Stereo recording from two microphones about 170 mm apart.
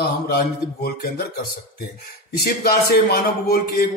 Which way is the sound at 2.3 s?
60° left (ahead or behind).